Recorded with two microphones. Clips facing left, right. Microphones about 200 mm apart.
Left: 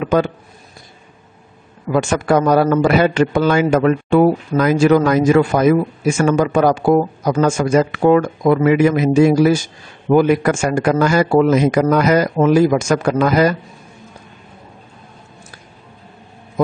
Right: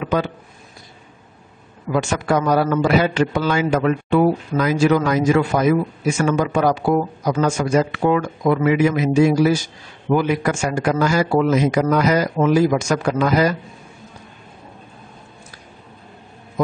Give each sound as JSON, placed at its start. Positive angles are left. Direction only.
{"t": 2.0, "sound": "a man's voice", "side_deg": 50}